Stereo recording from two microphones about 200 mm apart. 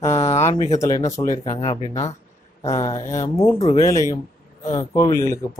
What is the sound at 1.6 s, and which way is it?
Speech, 30° left (ahead or behind).